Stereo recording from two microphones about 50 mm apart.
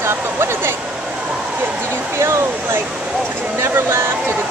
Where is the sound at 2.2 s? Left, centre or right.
Right.